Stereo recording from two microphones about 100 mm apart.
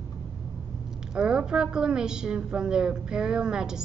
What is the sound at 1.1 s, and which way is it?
A child's voice, 10° right (ahead or behind).